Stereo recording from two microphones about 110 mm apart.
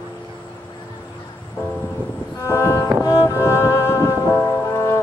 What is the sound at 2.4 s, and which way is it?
Music, 20° left (ahead or behind).